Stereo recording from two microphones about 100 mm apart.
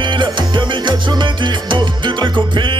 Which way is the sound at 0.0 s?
55° right (ahead or behind).